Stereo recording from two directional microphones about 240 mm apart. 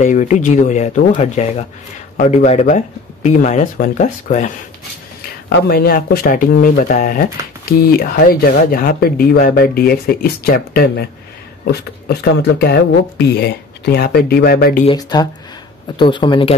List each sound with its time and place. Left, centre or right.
0.0 s speech: left
5.5 s speech: left
14.9 s speech: centre